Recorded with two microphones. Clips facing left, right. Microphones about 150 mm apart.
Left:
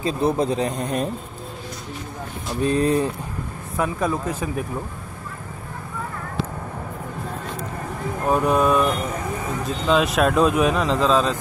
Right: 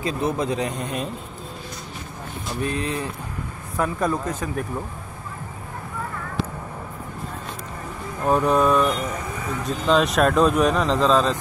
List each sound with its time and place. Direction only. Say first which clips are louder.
0.0 s speech: left 3 dB; 30° left (ahead or behind)
2.6 s speech: left 7 dB; 35° left (ahead or behind)
3.7 s speech: even; 5° left (ahead or behind)
8.3 s speech: even; 5° left (ahead or behind)